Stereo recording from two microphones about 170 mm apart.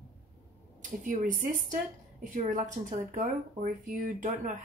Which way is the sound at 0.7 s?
50° right (ahead or behind).